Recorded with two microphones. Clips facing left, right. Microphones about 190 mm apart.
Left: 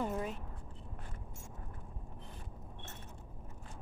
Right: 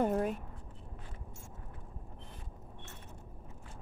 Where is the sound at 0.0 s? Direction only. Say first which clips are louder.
Right 6 dB; 50° right (ahead or behind).